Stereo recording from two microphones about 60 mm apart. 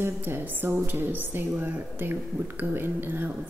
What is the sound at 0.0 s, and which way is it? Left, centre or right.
Speech, right.